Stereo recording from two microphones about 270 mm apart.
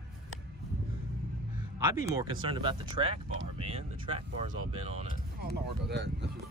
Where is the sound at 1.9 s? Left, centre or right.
Centre.